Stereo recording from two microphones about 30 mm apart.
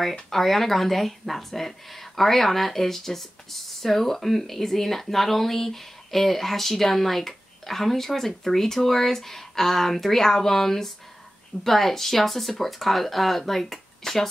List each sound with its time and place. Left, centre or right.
0.3 s speech: centre